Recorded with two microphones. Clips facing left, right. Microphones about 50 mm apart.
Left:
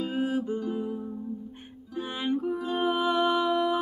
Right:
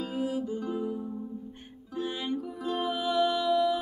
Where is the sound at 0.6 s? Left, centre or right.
Centre.